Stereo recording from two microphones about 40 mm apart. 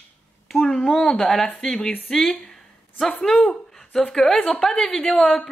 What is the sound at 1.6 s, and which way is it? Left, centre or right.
Speech, centre.